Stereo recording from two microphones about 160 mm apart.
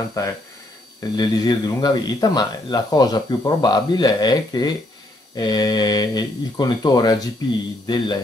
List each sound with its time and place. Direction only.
0.2 s speech: 20° left (ahead or behind)